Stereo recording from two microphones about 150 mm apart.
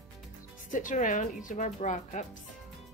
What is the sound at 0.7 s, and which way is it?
Speech, 60° left (ahead or behind).